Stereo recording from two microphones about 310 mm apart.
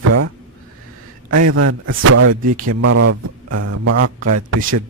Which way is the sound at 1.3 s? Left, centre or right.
Right.